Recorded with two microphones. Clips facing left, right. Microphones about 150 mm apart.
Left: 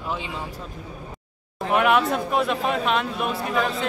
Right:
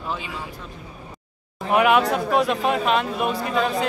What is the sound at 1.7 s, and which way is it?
Speech, centre (ahead or behind).